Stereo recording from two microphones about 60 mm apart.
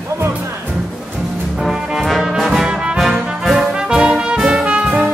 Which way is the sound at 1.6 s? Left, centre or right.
Centre.